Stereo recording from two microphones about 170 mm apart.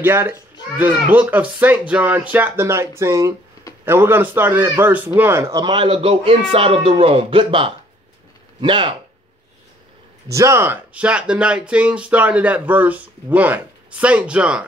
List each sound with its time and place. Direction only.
0.0 s a man's voice: 15° right (ahead or behind); by 8.9 s 30° right (ahead or behind)
10.3 s speech: 15° right (ahead or behind)